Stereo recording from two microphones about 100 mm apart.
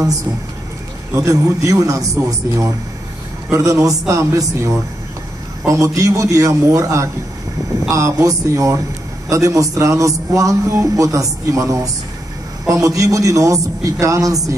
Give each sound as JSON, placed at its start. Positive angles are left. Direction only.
{"t": 1.1, "sound": "a man's voice", "side_deg": -35}